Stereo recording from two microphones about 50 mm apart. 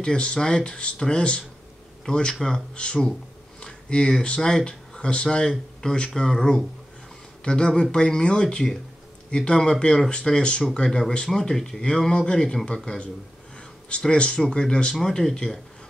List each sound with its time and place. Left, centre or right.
0.0 s speech: centre